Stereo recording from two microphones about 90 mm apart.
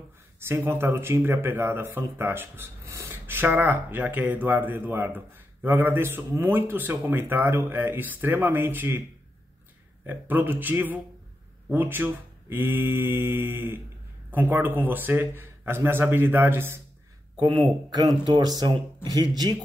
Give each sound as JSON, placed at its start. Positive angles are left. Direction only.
{"t": 0.4, "sound": "speech", "side_deg": -25}
{"t": 10.0, "sound": "speech", "side_deg": -20}
{"t": 17.5, "sound": "speech", "side_deg": -55}